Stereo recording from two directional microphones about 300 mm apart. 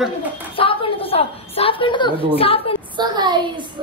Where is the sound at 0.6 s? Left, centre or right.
Centre.